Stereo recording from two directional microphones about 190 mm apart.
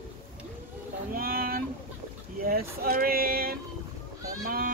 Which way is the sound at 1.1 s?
50° right (ahead or behind).